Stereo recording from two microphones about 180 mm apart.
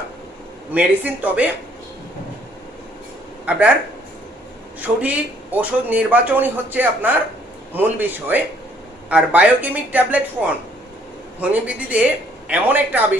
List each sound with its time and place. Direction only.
0.7 s speech: 10° right (ahead or behind)
3.4 s speech: 5° right (ahead or behind)
4.7 s speech: 10° right (ahead or behind)